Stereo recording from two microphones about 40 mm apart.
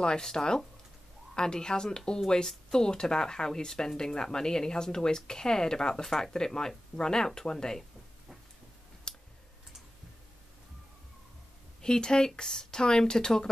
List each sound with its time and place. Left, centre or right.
0.0 s speech: centre
9.1 s a sound: left
11.8 s speech: centre